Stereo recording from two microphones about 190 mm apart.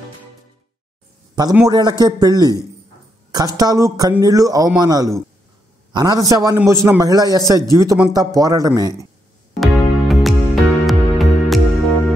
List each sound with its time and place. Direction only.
1.7 s a man's voice: 20° right (ahead or behind)
9.6 s music: centre (ahead or behind)